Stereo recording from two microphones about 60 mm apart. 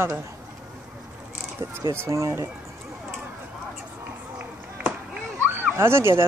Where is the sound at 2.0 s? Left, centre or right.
Right.